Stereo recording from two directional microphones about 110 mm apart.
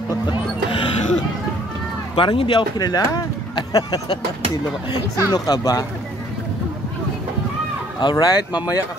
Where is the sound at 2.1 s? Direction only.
55° left (ahead or behind).